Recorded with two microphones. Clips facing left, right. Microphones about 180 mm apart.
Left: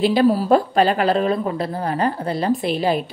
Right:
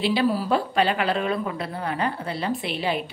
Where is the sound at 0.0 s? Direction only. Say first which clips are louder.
Left 6 dB; 45° left (ahead or behind).